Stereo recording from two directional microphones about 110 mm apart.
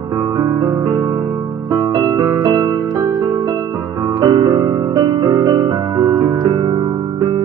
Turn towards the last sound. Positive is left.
turn(degrees=-35)  # may be behind; listen again after turning